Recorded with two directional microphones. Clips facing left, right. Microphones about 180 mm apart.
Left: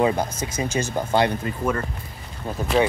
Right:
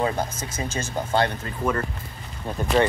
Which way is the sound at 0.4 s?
15° left (ahead or behind).